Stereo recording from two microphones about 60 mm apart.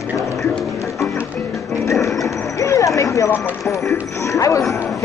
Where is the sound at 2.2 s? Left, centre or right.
Left.